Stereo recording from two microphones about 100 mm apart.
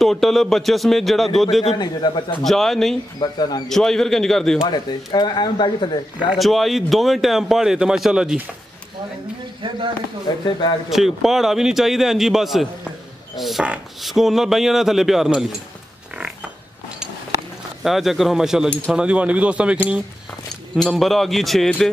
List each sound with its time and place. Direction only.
0.0 s speech: centre (ahead or behind)
1.8 s speech: 50° left (ahead or behind)
2.4 s speech: 5° left (ahead or behind)
3.2 s speech: 45° left (ahead or behind)
3.6 s speech: 5° left (ahead or behind)
4.6 s speech: 45° left (ahead or behind)
6.3 s speech: centre (ahead or behind)
10.2 s speech: 45° left (ahead or behind)
10.9 s speech: centre (ahead or behind)
17.8 s speech: centre (ahead or behind)
20.7 s speech: centre (ahead or behind)